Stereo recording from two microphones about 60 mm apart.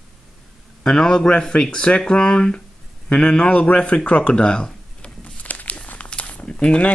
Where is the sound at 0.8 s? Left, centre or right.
Centre.